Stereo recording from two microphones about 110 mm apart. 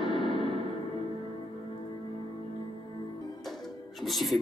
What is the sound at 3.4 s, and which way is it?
Music, centre (ahead or behind).